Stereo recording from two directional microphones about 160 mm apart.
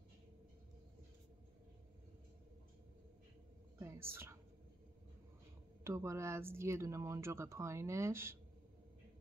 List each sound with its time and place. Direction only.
3.8 s a woman's voice: 15° right (ahead or behind)
5.9 s speech: 20° right (ahead or behind)